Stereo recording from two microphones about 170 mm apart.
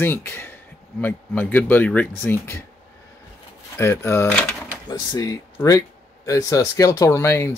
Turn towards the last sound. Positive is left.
turn(degrees=15)  # may be behind; listen again after turning